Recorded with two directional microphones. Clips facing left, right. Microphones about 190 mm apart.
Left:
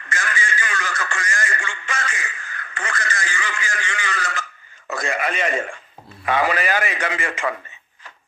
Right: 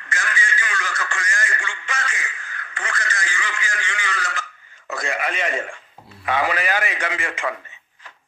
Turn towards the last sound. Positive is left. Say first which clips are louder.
# left 2 dB
turn(degrees=45)  # may be behind; listen again after turning